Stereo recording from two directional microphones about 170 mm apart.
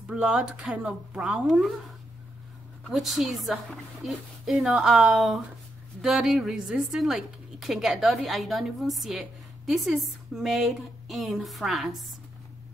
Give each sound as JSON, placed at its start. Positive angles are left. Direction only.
{"t": 0.1, "sound": "a woman's voice", "side_deg": -5}
{"t": 2.9, "sound": "a woman's voice", "side_deg": 0}